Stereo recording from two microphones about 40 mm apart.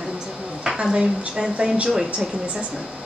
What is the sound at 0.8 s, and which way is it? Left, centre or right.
A woman's voice, right.